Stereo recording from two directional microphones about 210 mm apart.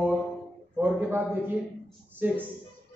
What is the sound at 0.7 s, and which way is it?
Speech, 10° right (ahead or behind).